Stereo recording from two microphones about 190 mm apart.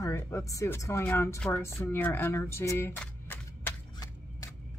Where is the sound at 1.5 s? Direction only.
15° left (ahead or behind).